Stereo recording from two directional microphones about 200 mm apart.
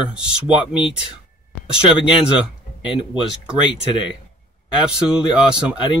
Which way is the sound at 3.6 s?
25° left (ahead or behind).